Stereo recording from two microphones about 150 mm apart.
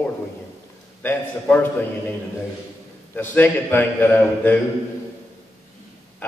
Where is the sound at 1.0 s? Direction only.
10° left (ahead or behind).